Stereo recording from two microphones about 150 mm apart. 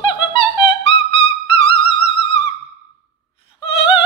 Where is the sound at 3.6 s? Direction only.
40° left (ahead or behind).